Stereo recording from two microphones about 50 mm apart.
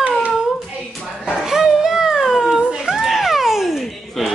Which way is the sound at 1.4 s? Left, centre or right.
Centre.